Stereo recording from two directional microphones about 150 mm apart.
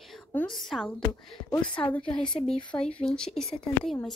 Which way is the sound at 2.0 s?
35° left (ahead or behind).